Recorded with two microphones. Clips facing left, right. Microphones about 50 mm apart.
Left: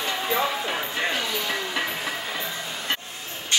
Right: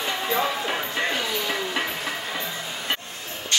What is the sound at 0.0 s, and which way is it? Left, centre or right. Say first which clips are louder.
Music: even; centre.